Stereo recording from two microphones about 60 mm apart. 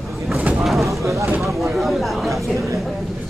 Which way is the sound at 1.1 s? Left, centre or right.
Right.